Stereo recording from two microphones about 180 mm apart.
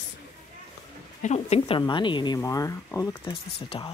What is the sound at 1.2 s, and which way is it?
Speech, 35° left (ahead or behind).